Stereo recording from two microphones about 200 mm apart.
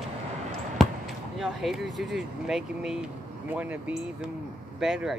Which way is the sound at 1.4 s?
Centre (ahead or behind).